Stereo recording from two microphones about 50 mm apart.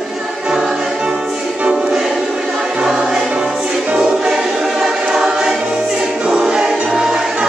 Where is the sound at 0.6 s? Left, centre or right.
Centre.